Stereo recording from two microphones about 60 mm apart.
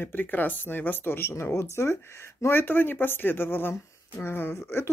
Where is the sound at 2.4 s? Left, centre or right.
Left.